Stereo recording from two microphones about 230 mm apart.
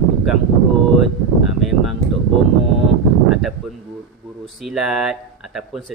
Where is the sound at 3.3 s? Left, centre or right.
Centre.